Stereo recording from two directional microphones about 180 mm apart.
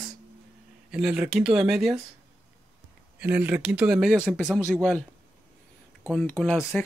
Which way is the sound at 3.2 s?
10° right (ahead or behind).